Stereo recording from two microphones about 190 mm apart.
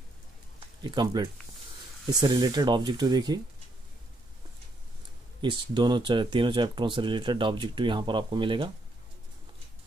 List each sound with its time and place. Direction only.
0.8 s speech: 25° right (ahead or behind)
5.4 s speech: 25° right (ahead or behind)